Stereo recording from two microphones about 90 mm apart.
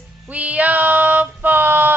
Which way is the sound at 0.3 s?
15° right (ahead or behind).